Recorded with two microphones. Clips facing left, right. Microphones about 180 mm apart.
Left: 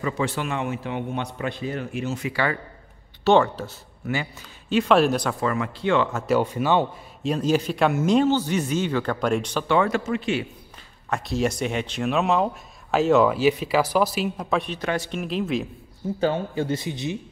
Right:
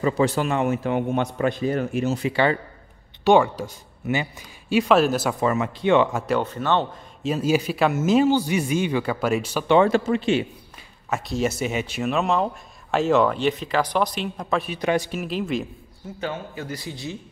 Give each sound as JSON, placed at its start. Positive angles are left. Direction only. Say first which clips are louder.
{"t": 0.0, "sound": "a man's voice", "louder": "right 5 dB", "side_deg": -40}
{"t": 3.3, "sound": "speech", "louder": "right 1 dB", "side_deg": -10}
{"t": 5.4, "sound": "speech", "louder": "right 3 dB", "side_deg": -20}
{"t": 6.2, "sound": "speech", "louder": "left 2 dB", "side_deg": 5}
{"t": 7.2, "sound": "speech", "louder": "even", "side_deg": -5}
{"t": 9.7, "sound": "speech", "louder": "right 5 dB", "side_deg": -25}
{"t": 11.1, "sound": "speech", "louder": "even", "side_deg": 0}
{"t": 14.8, "sound": "speech", "louder": "right 4 dB", "side_deg": -15}
{"t": 15.0, "sound": "speech", "louder": "even", "side_deg": 0}
{"t": 16.2, "sound": "a man's voice", "louder": "left 7 dB", "side_deg": 30}